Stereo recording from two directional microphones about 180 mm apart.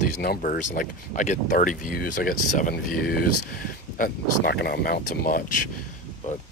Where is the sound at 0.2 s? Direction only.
50° left (ahead or behind).